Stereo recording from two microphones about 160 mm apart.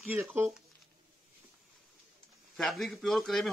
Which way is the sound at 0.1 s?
10° right (ahead or behind).